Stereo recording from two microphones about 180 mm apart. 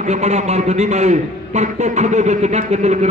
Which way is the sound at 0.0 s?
40° right (ahead or behind).